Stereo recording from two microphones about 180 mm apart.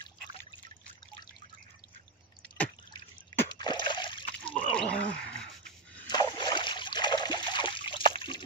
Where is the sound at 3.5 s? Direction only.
25° left (ahead or behind).